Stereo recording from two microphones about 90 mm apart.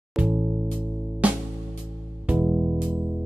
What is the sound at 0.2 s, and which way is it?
Music, 15° right (ahead or behind).